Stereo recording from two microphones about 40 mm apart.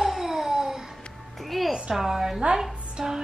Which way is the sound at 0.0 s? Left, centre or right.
Centre.